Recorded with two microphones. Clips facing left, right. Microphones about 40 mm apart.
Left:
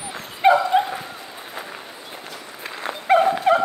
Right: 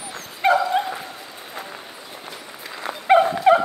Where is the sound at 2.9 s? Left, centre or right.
Left.